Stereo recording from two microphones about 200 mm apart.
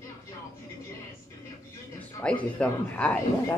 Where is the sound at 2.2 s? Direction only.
5° left (ahead or behind).